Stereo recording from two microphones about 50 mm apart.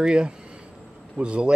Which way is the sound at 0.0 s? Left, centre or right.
Centre.